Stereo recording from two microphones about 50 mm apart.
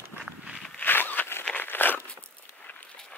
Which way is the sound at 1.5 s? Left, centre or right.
Left.